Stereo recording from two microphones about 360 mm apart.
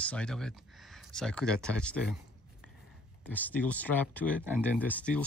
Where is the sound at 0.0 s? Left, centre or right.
Centre.